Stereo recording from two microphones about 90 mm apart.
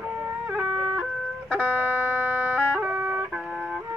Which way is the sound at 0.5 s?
15° right (ahead or behind).